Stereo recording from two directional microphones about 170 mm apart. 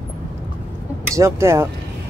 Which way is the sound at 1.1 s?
15° right (ahead or behind).